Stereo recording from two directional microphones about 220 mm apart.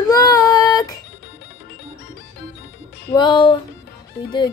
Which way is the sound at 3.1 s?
20° left (ahead or behind).